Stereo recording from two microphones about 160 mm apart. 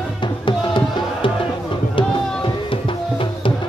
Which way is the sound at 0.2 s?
30° left (ahead or behind).